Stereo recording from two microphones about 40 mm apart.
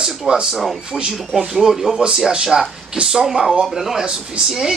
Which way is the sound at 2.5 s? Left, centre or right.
Right.